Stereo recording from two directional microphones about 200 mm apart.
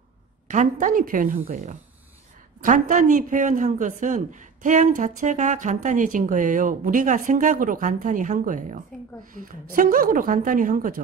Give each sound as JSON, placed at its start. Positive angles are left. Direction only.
{"t": 0.5, "sound": "speech", "side_deg": -40}
{"t": 2.6, "sound": "a woman's voice", "side_deg": -40}